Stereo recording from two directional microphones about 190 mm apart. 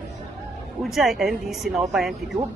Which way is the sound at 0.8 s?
Centre (ahead or behind).